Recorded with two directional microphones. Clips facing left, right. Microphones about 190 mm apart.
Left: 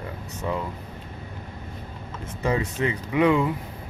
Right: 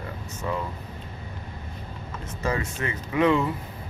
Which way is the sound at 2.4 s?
20° left (ahead or behind).